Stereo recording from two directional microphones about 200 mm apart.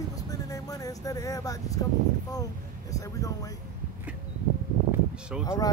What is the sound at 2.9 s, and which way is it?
Speech, 15° left (ahead or behind).